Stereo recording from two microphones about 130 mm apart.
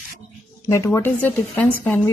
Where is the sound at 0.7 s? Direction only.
20° left (ahead or behind).